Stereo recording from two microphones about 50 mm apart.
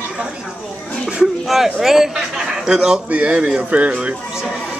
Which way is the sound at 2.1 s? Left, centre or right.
Centre.